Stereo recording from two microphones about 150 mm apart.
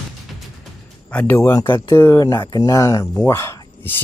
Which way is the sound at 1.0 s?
10° left (ahead or behind).